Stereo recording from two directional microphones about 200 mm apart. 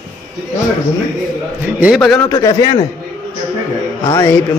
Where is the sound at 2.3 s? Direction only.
20° left (ahead or behind).